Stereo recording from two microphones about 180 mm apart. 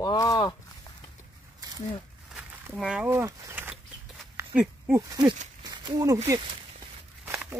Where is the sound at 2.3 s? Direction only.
5° right (ahead or behind).